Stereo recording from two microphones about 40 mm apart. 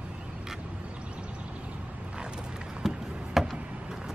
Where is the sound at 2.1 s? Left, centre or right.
Right.